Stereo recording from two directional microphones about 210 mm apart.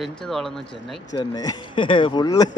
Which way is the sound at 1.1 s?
20° left (ahead or behind).